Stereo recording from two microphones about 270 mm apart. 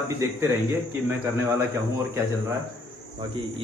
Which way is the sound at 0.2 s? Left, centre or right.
Centre.